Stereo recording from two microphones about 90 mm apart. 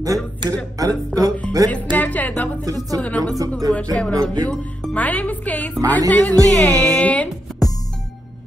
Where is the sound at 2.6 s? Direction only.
40° right (ahead or behind).